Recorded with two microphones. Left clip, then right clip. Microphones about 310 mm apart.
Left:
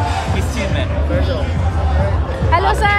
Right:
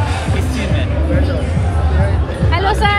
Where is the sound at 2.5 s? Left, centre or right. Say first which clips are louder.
Left 2 dB; left.